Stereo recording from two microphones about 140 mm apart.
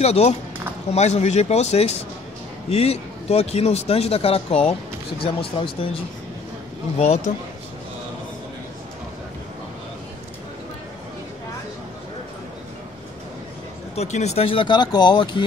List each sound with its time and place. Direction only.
0.0 s speech: 50° left (ahead or behind)
13.9 s speech: 55° left (ahead or behind); by 15.4 s 35° left (ahead or behind)